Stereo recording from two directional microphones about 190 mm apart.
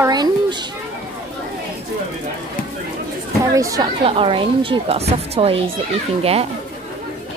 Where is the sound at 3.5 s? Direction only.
20° right (ahead or behind).